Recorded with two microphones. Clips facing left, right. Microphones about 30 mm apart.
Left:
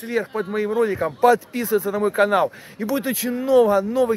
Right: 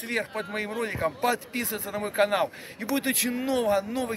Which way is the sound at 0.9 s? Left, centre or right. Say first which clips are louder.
Left 8 dB; centre.